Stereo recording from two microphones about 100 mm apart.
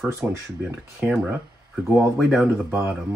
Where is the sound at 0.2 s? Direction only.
20° right (ahead or behind).